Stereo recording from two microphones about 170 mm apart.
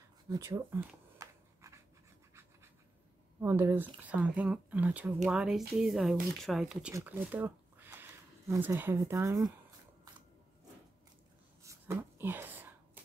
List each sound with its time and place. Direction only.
0.3 s writing: 20° right (ahead or behind)
3.3 s speech: 15° right (ahead or behind)
11.6 s a sound: 15° right (ahead or behind)